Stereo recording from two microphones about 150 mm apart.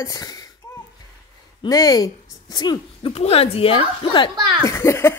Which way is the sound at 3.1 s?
40° left (ahead or behind).